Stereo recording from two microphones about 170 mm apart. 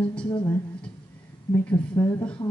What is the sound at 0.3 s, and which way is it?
Speech, 25° left (ahead or behind).